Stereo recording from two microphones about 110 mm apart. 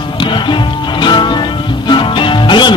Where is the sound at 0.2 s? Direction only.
45° left (ahead or behind).